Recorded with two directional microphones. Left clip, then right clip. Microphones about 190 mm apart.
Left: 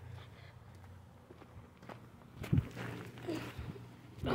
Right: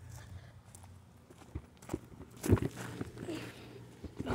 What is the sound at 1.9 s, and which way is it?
Biting, 75° right (ahead or behind).